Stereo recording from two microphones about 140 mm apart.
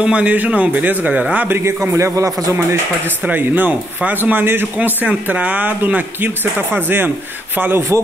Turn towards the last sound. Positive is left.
turn(degrees=-15)  # may be behind; listen again after turning